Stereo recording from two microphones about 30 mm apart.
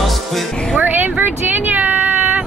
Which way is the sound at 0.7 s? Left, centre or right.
Right.